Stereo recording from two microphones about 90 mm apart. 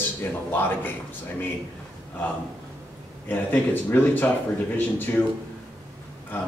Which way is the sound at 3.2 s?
20° left (ahead or behind).